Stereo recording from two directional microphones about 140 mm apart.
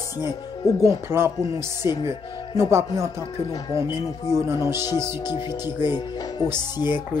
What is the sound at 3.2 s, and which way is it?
Chopping, 30° left (ahead or behind).